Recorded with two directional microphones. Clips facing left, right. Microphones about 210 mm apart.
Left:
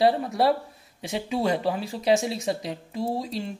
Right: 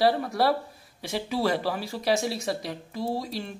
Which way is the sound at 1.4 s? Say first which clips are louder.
Left 2 dB; 20° left (ahead or behind).